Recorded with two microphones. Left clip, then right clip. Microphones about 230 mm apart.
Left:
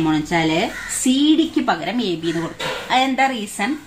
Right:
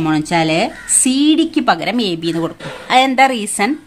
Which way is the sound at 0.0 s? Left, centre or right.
Right.